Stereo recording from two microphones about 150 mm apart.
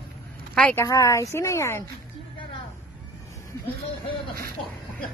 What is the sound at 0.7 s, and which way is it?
Speech, 20° left (ahead or behind).